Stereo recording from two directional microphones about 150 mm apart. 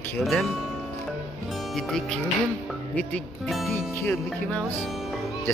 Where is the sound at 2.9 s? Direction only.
5° left (ahead or behind).